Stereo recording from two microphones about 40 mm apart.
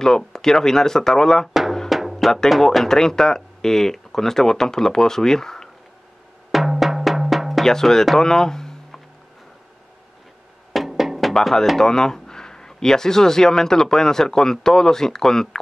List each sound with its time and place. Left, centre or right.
0.3 s speech: centre
1.5 s drum: centre
1.9 s music: centre
2.6 s speech: centre
6.5 s music: centre
7.6 s speech: centre
8.2 s a sound: centre
10.7 s music: centre
11.4 s speech: centre